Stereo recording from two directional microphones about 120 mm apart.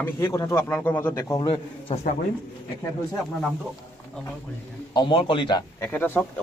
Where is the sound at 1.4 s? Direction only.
45° left (ahead or behind).